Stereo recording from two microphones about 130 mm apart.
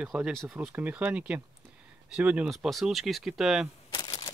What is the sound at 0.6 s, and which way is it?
Speech, 10° right (ahead or behind).